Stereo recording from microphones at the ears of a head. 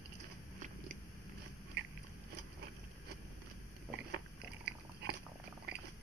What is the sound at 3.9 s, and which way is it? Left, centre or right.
Biting, right.